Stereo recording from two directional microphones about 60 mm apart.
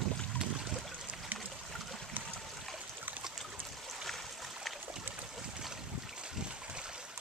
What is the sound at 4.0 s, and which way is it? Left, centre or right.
Stream, centre.